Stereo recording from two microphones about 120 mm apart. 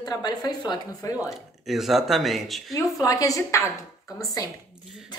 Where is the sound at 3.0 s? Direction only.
30° left (ahead or behind).